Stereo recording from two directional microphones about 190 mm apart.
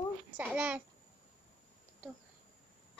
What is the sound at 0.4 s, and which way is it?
Speech, 5° right (ahead or behind).